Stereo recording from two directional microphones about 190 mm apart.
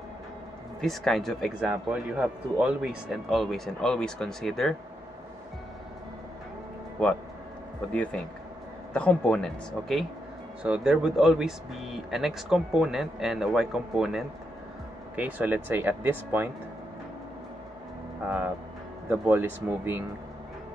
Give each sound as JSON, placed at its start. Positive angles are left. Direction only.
{"t": 0.7, "sound": "speech", "side_deg": 0}
{"t": 7.9, "sound": "speech", "side_deg": 5}
{"t": 18.2, "sound": "speech", "side_deg": -10}